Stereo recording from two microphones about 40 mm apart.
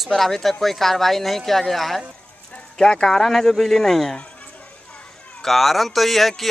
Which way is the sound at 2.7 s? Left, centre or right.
Centre.